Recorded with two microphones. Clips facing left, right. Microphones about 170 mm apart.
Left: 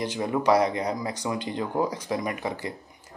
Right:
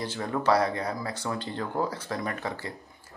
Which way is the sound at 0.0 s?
15° left (ahead or behind).